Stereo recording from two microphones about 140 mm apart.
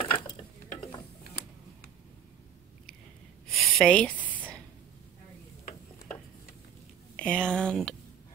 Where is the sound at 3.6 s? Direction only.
5° left (ahead or behind).